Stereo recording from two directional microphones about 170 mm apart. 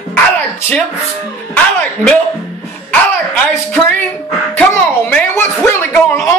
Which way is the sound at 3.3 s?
10° left (ahead or behind).